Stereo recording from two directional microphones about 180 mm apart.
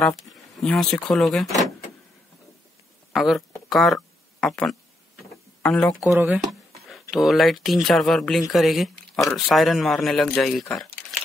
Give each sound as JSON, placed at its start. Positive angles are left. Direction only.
{"t": 0.0, "sound": "speech", "side_deg": 0}
{"t": 3.1, "sound": "speech", "side_deg": 0}
{"t": 3.6, "sound": "a sound", "side_deg": 0}
{"t": 5.6, "sound": "speech", "side_deg": 5}
{"t": 10.7, "sound": "crumpling", "side_deg": 0}